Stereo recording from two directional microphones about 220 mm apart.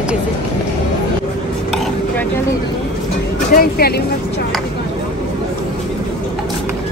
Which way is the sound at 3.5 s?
45° left (ahead or behind).